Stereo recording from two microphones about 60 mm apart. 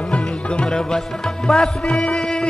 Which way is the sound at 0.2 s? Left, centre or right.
Centre.